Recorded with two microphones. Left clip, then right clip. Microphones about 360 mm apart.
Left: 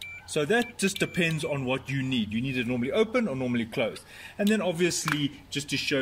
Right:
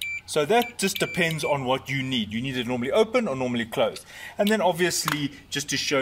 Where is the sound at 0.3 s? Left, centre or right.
Centre.